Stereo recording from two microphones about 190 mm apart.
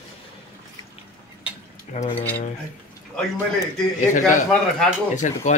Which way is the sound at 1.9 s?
35° left (ahead or behind).